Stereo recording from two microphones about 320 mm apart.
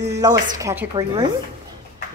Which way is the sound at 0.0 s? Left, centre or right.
Centre.